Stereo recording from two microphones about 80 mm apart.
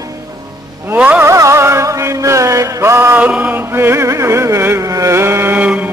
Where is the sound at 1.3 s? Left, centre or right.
Right.